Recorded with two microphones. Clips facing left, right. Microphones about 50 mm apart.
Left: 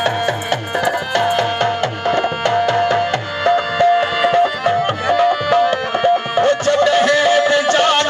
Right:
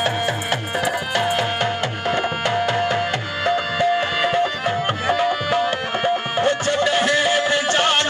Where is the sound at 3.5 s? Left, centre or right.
Centre.